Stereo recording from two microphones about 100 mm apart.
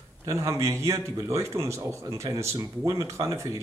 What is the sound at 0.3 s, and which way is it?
Speech, 30° right (ahead or behind).